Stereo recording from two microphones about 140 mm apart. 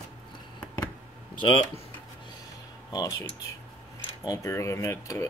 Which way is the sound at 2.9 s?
25° left (ahead or behind).